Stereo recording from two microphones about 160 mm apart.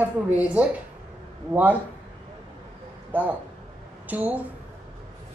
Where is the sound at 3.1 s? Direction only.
10° right (ahead or behind).